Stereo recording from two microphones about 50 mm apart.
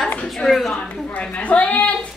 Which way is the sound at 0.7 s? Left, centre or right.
Left.